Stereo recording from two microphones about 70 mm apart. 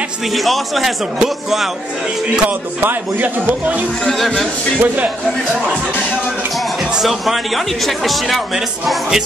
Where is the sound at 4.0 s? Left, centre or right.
Centre.